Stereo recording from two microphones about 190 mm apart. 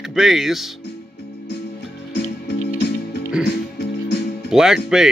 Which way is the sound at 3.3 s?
5° right (ahead or behind).